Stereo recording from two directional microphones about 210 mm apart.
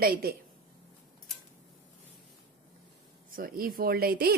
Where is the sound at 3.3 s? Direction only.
45° right (ahead or behind).